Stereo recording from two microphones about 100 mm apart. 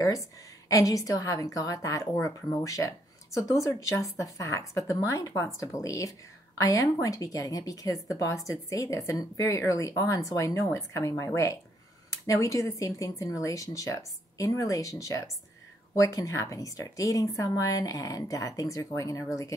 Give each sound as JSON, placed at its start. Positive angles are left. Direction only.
{"t": 0.7, "sound": "a woman's voice", "side_deg": 35}